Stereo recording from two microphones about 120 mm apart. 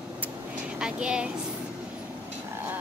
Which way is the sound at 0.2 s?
10° right (ahead or behind).